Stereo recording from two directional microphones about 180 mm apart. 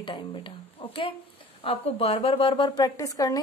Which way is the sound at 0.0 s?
25° left (ahead or behind).